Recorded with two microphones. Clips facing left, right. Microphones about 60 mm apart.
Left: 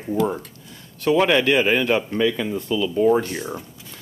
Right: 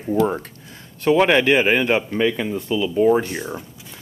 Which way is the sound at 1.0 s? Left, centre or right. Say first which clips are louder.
Right 2 dB; centre.